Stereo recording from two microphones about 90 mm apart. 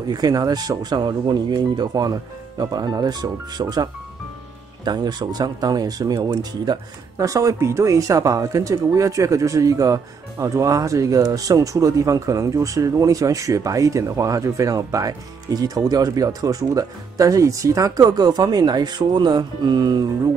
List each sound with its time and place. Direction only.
0.1 s speech: 45° right (ahead or behind)